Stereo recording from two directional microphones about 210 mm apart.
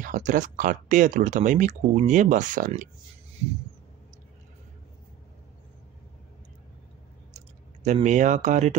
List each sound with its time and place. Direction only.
0.0 s speech: 40° right (ahead or behind)
3.4 s a sound: 30° right (ahead or behind)
7.3 s speech: 35° right (ahead or behind)